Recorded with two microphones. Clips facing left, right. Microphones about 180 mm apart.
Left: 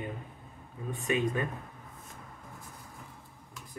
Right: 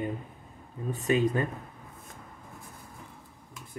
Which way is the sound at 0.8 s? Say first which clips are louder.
Right 4 dB; 35° right (ahead or behind).